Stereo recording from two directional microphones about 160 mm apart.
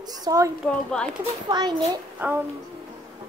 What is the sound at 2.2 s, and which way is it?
Music, 10° right (ahead or behind).